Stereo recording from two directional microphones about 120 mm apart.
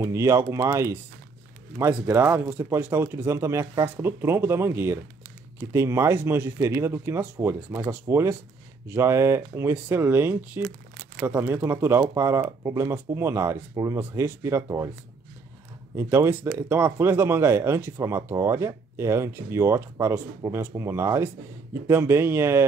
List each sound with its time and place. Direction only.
0.0 s speech: 25° right (ahead or behind)
16.0 s speech: 20° right (ahead or behind)